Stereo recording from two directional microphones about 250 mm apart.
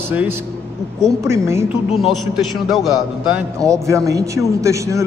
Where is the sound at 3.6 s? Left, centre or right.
Centre.